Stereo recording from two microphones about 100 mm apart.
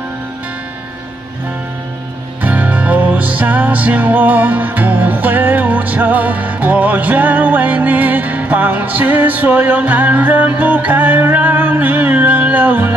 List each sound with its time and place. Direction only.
2.4 s music: 15° right (ahead or behind)